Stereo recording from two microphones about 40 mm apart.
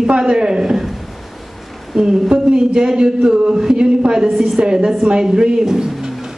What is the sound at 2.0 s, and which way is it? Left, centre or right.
A woman's voice, right.